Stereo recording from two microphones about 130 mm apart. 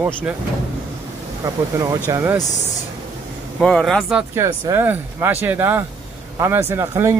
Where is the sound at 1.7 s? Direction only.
25° right (ahead or behind).